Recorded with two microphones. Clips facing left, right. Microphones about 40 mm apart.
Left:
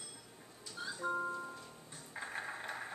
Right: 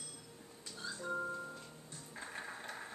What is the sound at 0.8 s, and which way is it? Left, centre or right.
Music, left.